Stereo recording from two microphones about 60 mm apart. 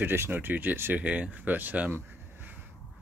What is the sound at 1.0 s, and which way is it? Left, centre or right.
Speech, right.